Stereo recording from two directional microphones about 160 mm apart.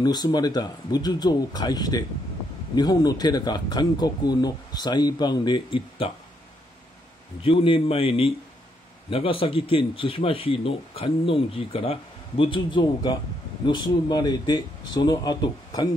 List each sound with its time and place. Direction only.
0.0 s speech: 25° left (ahead or behind)
7.4 s speech: 35° left (ahead or behind)